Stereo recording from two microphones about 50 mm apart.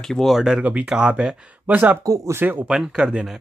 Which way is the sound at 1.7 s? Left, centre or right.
Right.